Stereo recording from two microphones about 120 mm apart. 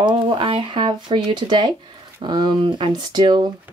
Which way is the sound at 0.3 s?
45° right (ahead or behind).